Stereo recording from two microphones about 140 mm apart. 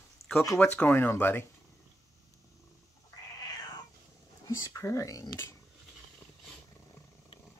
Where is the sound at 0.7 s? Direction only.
15° left (ahead or behind).